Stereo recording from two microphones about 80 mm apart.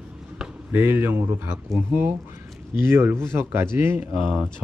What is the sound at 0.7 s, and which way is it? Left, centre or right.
A man's voice, right.